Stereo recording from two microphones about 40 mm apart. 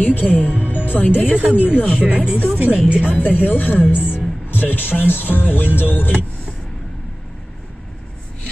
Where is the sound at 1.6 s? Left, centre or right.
Left.